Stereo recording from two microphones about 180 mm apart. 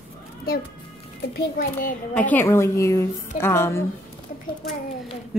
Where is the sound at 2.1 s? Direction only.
10° left (ahead or behind).